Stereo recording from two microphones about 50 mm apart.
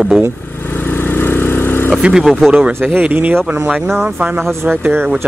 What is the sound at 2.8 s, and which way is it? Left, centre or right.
Speech, right.